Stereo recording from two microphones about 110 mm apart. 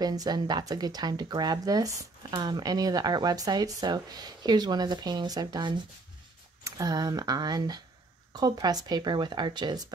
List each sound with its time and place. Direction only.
0.0 s a woman's voice: 35° right (ahead or behind)